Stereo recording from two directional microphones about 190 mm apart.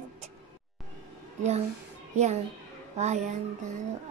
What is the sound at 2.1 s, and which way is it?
A child's voice, 35° right (ahead or behind).